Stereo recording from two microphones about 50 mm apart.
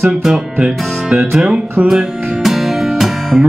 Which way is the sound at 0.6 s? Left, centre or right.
Centre.